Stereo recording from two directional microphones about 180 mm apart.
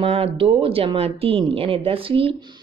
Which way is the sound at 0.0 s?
30° right (ahead or behind).